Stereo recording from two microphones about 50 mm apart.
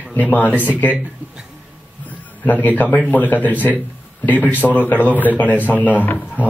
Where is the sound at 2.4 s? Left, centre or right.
Left.